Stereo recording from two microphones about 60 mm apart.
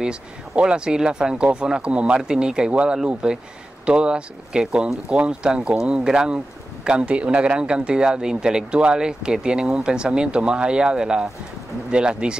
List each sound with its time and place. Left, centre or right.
0.0 s speech: centre